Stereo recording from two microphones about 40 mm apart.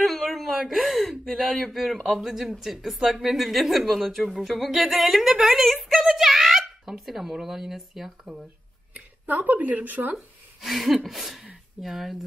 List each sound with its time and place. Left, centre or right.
0.0 s a sound: centre
0.7 s speech: centre
8.9 s speech: right
10.1 s speech: centre